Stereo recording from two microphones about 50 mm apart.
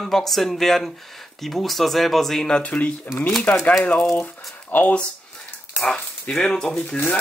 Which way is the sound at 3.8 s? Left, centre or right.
Left.